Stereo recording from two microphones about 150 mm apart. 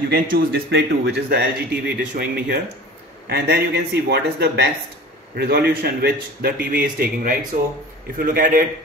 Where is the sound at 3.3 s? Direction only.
90° right.